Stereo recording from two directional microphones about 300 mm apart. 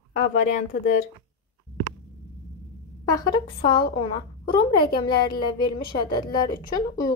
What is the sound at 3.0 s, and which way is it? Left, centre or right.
A woman's voice, centre.